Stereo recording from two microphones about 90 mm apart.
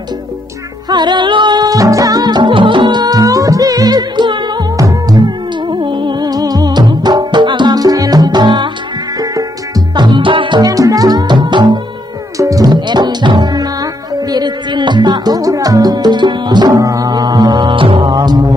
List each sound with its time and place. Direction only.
0.8 s music: 55° right (ahead or behind)
5.7 s music: 65° right (ahead or behind)
9.2 s music: 45° right (ahead or behind)
10.0 s music: 65° right (ahead or behind)
10.6 s music: 40° right (ahead or behind)
12.4 s music: 40° right (ahead or behind)
12.8 s music: 55° right (ahead or behind)
16.8 s music: 40° right (ahead or behind)
17.6 s music: 75° right (ahead or behind); by 18.5 s 50° right (ahead or behind)